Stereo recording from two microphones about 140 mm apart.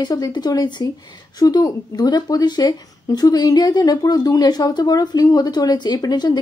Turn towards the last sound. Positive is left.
turn(degrees=30)  # may be behind; listen again after turning